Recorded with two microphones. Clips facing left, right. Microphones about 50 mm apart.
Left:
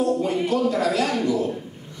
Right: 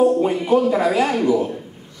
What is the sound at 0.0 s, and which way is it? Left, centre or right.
Speech, centre.